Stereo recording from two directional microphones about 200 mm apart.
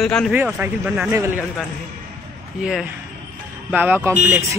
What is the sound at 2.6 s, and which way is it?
Speech, centre (ahead or behind).